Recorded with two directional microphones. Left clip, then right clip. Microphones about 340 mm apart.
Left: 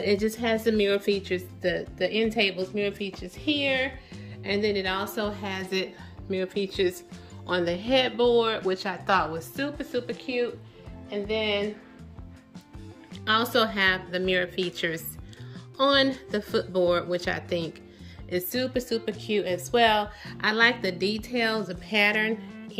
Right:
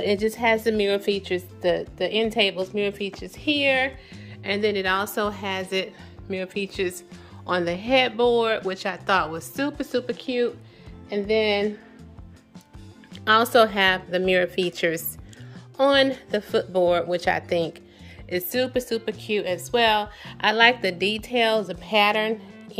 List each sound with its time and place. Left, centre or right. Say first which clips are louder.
0.0 s speech: right 4 dB; centre
11.2 s speech: right 6 dB; right
13.1 s a woman's voice: right 6 dB; centre